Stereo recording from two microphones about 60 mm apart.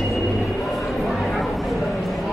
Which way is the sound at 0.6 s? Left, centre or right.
Centre.